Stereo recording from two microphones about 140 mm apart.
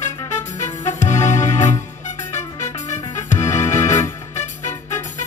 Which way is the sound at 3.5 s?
60° left (ahead or behind).